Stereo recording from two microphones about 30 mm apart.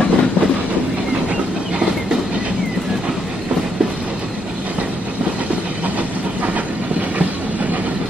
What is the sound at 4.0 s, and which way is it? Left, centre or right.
Train, right.